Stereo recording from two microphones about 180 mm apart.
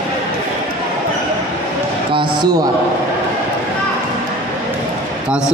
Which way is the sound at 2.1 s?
25° right (ahead or behind).